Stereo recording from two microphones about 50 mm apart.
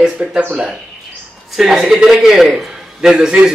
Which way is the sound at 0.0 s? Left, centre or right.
Centre.